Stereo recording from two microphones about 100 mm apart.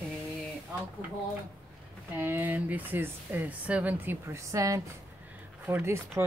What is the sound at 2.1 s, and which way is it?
Speech, 20° right (ahead or behind).